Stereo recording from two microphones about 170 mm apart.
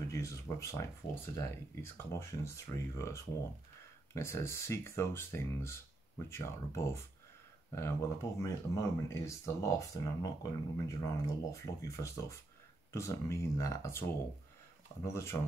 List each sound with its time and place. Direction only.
0.1 s speech: 15° left (ahead or behind)
15.0 s speech: 15° left (ahead or behind)